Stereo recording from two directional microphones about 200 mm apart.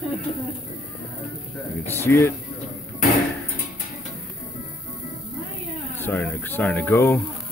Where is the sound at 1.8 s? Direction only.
10° left (ahead or behind).